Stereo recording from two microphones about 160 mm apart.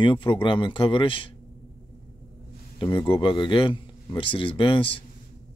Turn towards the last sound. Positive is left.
turn(degrees=35)  # may be behind; listen again after turning